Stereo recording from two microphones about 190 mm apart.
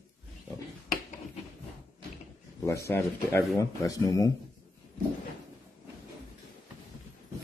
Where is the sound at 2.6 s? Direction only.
15° left (ahead or behind).